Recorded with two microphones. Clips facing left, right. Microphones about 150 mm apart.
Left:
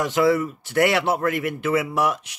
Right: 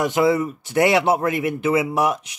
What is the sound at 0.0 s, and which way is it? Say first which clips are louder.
Speech: right 1 dB; 15° right (ahead or behind).